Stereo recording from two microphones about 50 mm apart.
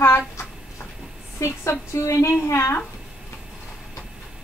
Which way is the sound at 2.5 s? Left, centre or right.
Left.